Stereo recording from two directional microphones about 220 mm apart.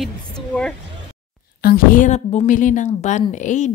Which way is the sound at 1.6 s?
40° left (ahead or behind).